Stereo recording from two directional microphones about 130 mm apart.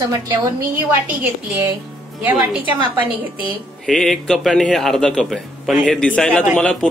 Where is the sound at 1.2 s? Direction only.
20° right (ahead or behind).